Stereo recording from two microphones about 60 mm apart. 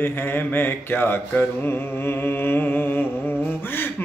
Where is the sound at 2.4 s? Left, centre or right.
Left.